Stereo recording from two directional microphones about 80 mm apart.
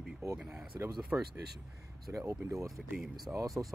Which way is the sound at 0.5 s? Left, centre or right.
Right.